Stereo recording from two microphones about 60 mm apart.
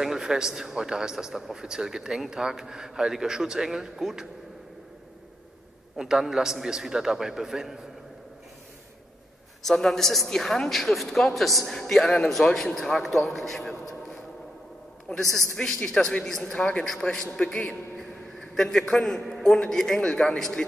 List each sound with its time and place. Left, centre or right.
0.0 s speech: centre
5.9 s speech: centre
9.6 s a woman's voice: centre
16.5 s a man's voice: centre
17.0 s a man's voice: centre